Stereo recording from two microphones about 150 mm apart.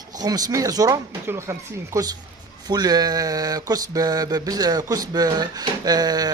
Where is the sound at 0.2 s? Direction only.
25° right (ahead or behind).